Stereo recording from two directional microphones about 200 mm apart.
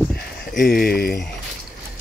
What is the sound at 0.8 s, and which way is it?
Speech, 50° left (ahead or behind).